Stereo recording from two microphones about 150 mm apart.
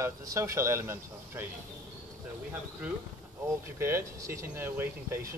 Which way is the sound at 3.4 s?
20° right (ahead or behind).